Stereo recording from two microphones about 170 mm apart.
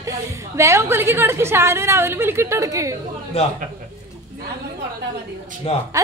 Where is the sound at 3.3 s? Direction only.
35° left (ahead or behind).